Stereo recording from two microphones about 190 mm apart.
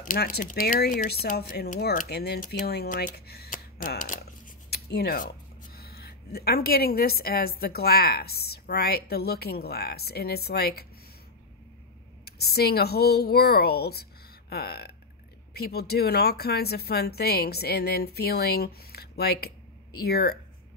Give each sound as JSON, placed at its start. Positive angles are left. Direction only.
{"t": 0.0, "sound": "speech", "side_deg": 50}
{"t": 12.3, "sound": "speech", "side_deg": 55}